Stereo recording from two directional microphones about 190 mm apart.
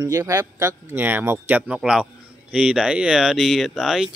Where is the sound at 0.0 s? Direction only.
15° right (ahead or behind).